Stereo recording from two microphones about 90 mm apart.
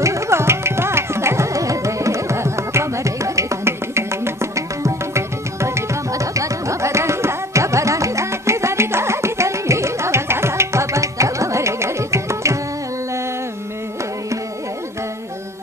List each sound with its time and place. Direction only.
0.0 s music: 35° right (ahead or behind)